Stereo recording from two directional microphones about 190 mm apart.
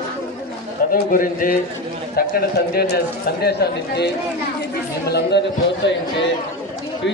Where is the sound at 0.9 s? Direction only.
45° left (ahead or behind).